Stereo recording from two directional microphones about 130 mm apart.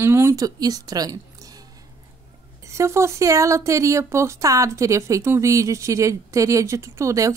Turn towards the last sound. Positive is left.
turn(degrees=-25)  # may be behind; listen again after turning